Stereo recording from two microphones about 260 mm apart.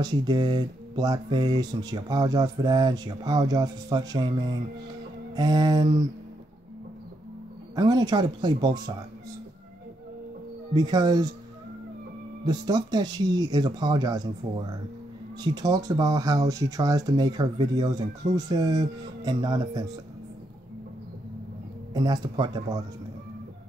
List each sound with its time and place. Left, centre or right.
0.0 s speech: centre
7.7 s speech: centre
10.7 s speech: centre
12.4 s speech: centre
15.4 s speech: centre
21.9 s speech: centre